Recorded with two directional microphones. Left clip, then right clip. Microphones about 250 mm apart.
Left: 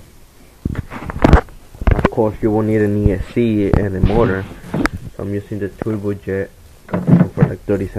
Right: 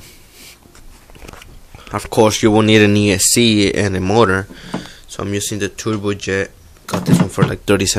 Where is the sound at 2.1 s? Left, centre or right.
Right.